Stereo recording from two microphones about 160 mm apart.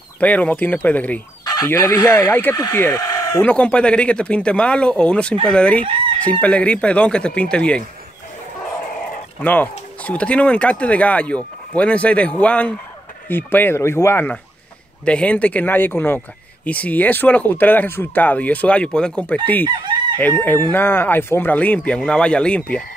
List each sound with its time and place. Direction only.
0.2 s speech: 10° left (ahead or behind)
1.4 s fowl: 25° left (ahead or behind)
1.7 s speech: 15° left (ahead or behind)
3.0 s chicken: 20° left (ahead or behind)
3.4 s speech: 5° left (ahead or behind)
9.4 s speech: 10° left (ahead or behind)
19.6 s chicken: 30° right (ahead or behind)
20.2 s speech: 10° left (ahead or behind)